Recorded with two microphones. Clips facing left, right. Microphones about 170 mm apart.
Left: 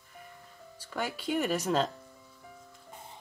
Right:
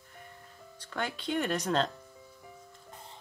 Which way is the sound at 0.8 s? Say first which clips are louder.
Left 1 dB; 5° left (ahead or behind).